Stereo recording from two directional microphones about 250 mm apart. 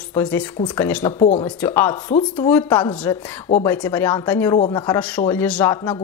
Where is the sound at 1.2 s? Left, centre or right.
Left.